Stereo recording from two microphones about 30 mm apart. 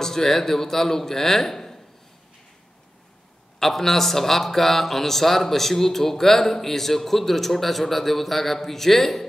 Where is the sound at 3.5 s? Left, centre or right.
Centre.